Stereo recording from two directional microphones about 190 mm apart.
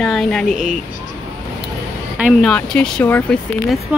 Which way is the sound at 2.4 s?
5° left (ahead or behind).